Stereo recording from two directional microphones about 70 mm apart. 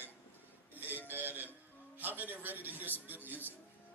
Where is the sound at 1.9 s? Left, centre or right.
Right.